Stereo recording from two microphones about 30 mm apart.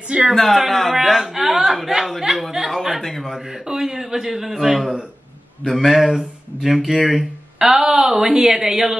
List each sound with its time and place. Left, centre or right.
0.3 s a man's voice: centre
2.5 s chuckle: centre
3.0 s speech: centre
3.6 s a man's voice: centre